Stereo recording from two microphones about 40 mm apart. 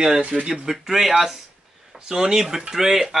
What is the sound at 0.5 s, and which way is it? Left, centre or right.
Speech, centre.